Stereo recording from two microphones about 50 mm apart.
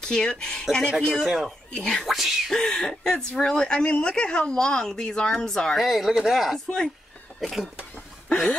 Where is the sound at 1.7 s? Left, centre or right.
Centre.